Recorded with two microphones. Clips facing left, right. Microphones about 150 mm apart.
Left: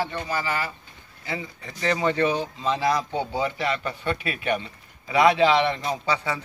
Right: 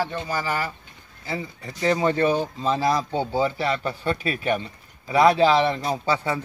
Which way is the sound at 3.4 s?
35° right (ahead or behind).